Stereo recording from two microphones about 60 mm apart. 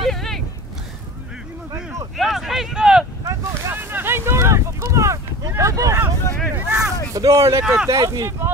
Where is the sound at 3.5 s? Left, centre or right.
Right.